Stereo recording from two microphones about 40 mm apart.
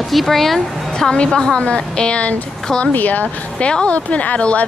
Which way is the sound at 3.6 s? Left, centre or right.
Left.